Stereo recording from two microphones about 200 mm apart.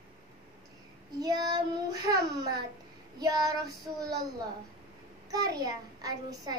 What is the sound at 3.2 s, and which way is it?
Child singing, 20° right (ahead or behind).